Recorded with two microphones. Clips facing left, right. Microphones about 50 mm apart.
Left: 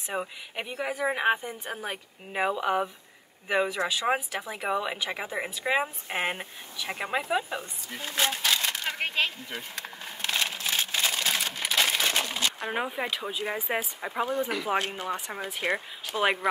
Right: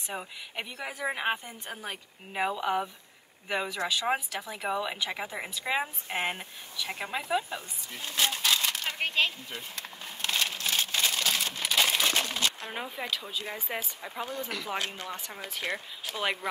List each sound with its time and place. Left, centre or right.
0.1 s speech: centre
6.0 s speech: left
8.6 s a sound: centre
14.7 s speech: left